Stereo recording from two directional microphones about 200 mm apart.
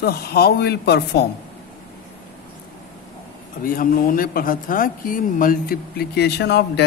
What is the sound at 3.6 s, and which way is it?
Speech, 45° left (ahead or behind).